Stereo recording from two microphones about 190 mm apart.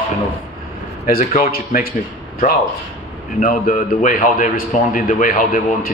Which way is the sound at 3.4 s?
45° left (ahead or behind).